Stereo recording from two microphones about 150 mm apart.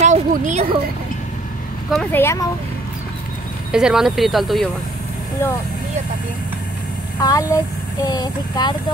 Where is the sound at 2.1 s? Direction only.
15° left (ahead or behind).